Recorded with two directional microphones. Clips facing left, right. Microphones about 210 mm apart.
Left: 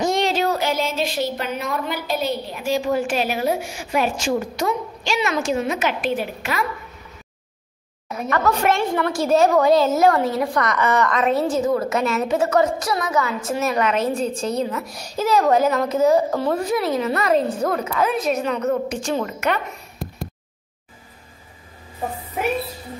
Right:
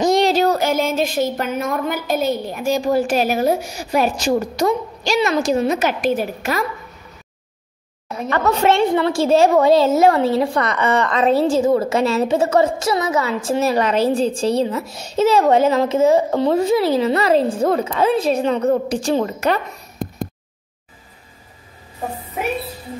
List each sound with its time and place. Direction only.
0.0 s a woman's voice: 40° right (ahead or behind)
8.3 s a woman's voice: 25° right (ahead or behind)